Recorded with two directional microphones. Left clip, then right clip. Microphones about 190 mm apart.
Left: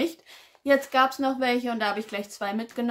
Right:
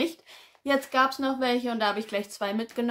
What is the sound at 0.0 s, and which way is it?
Speech, 5° right (ahead or behind).